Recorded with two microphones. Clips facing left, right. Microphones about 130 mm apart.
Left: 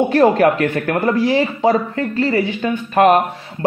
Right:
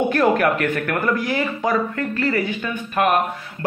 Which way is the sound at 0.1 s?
30° left (ahead or behind).